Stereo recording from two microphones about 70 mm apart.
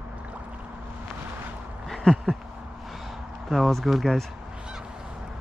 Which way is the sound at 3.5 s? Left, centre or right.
Centre.